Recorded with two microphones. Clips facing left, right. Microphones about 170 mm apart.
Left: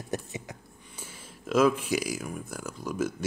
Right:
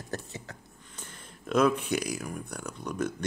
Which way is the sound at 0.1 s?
15° left (ahead or behind).